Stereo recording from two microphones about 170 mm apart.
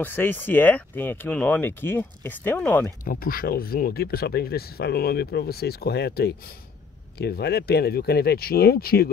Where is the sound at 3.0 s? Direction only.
55° left (ahead or behind).